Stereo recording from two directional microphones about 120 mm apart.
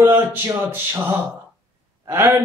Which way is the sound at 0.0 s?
15° right (ahead or behind).